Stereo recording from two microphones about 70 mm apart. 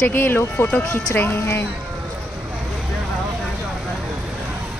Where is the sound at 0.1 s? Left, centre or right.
Left.